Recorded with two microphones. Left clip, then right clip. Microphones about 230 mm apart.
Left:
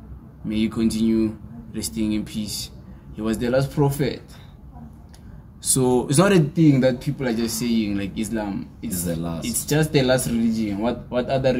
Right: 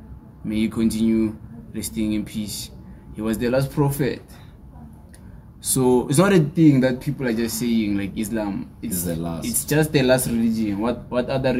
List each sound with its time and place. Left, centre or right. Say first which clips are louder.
0.5 s speech: even; centre
5.6 s speech: right 1 dB; centre
8.9 s speech: even; centre
9.4 s speech: right 2 dB; centre